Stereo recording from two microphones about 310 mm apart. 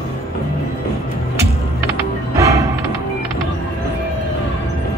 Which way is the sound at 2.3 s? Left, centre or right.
Centre.